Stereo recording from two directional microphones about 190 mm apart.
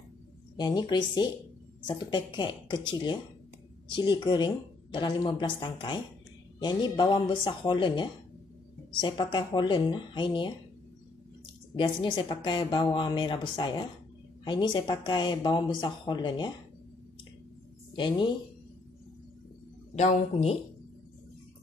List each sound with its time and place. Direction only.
0.6 s speech: 25° left (ahead or behind)
11.7 s speech: 25° left (ahead or behind)
17.9 s speech: 25° left (ahead or behind)
20.0 s speech: 35° left (ahead or behind)